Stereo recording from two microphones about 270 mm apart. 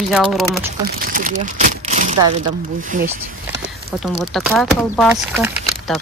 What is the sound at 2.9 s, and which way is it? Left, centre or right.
Speech, right.